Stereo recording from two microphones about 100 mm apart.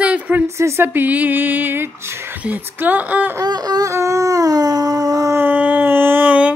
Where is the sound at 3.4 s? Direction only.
45° right (ahead or behind).